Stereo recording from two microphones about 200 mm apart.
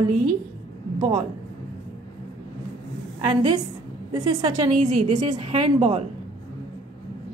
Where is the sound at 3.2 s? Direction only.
20° right (ahead or behind).